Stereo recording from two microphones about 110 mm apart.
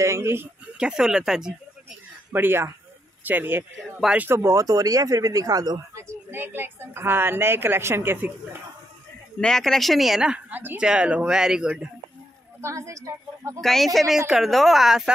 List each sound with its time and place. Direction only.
0.0 s speech: 25° right (ahead or behind)
0.7 s speech: 5° right (ahead or behind)
2.3 s speech: 20° right (ahead or behind)
4.3 s speech: 25° right (ahead or behind)
9.4 s speech: 5° left (ahead or behind)
10.6 s speech: 20° right (ahead or behind)
12.6 s speech: 30° right (ahead or behind)
13.6 s speech: 5° left (ahead or behind)